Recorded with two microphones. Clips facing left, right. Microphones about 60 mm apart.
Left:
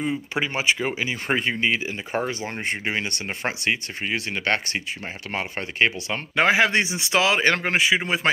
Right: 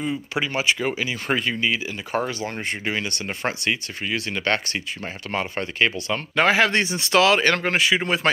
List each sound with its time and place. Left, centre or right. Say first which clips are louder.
0.3 s speech: right 1 dB; left
3.1 s speech: right 1 dB; centre
3.7 s speech: even; left; by 8.3 s centre